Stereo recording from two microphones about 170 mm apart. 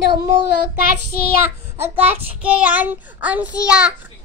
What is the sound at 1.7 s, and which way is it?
Child singing, 10° right (ahead or behind).